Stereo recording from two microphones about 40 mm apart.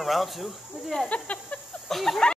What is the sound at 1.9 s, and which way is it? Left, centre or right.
Speech, centre.